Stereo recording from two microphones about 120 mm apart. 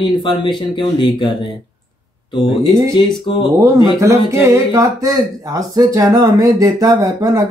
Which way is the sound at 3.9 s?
25° right (ahead or behind).